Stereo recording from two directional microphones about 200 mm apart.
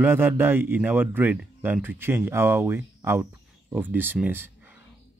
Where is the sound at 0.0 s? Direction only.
10° right (ahead or behind).